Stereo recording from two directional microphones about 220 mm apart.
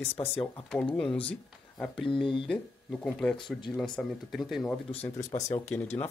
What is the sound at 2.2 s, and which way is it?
Speech, 25° left (ahead or behind).